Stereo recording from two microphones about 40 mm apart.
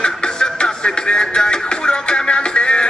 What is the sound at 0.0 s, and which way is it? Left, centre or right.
Music, left.